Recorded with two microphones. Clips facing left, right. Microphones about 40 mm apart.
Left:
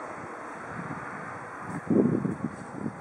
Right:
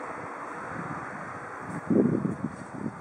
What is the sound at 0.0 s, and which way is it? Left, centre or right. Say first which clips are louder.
Vehicle: right 2 dB; centre.